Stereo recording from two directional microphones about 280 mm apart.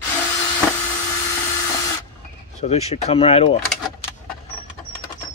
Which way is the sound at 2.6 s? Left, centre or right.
Left.